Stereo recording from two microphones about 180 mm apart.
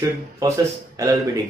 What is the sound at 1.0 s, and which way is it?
Speech, 15° right (ahead or behind).